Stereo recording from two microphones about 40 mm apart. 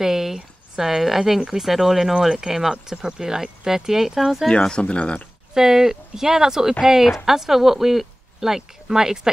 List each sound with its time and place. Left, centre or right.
0.0 s speech: centre
4.5 s speech: left
5.5 s speech: centre